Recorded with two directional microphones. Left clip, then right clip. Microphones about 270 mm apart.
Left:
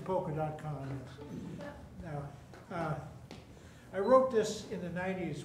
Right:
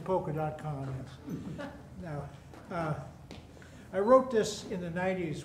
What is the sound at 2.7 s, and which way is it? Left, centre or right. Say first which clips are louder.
Speech: right 3 dB; centre.